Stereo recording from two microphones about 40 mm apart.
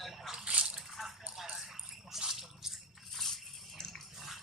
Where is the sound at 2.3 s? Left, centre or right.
Centre.